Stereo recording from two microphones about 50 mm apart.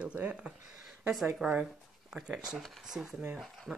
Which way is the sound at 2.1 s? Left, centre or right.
Centre.